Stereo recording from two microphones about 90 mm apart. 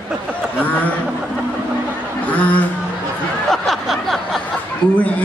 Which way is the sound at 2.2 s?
15° left (ahead or behind).